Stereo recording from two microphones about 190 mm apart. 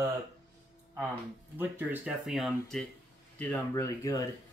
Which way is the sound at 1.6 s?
10° right (ahead or behind).